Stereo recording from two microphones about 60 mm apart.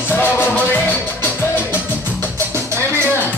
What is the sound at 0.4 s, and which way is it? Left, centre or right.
Music, left.